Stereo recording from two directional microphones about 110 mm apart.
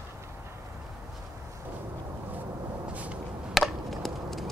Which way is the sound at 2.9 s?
10° right (ahead or behind).